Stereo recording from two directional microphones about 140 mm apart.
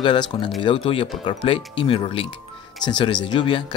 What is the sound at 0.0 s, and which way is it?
Speech, 35° left (ahead or behind).